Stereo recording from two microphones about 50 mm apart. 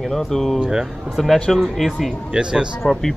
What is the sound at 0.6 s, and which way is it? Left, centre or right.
Speech, centre.